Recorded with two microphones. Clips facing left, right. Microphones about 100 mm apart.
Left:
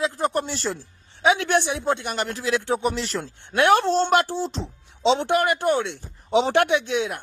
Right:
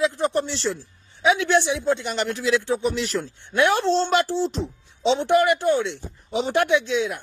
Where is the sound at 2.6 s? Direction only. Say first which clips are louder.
Even; 55° left (ahead or behind).